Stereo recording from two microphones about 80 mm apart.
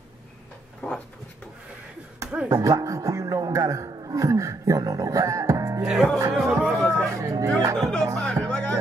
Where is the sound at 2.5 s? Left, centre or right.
Right.